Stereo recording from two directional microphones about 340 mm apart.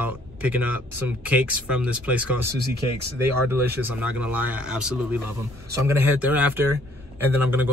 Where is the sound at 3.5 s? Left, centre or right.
Centre.